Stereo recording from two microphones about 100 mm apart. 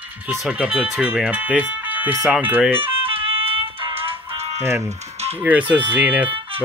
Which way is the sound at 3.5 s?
60° right (ahead or behind).